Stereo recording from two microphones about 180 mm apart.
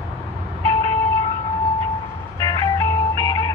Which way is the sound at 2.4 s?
20° left (ahead or behind).